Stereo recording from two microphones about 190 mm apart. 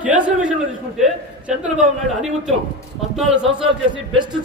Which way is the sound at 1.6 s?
5° right (ahead or behind).